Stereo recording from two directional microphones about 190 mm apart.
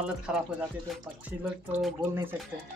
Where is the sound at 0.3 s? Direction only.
5° right (ahead or behind).